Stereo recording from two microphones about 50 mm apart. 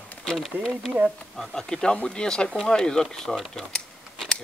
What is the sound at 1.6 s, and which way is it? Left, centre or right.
Speech, centre.